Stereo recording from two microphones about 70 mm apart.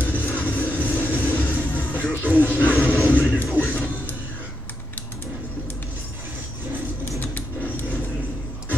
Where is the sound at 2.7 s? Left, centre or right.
Left.